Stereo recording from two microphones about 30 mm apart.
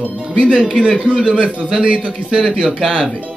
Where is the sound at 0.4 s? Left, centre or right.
Right.